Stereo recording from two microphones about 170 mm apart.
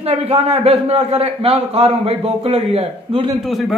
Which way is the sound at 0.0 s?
35° right (ahead or behind).